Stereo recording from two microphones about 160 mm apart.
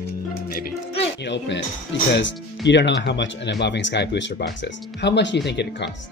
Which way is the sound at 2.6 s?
90° left.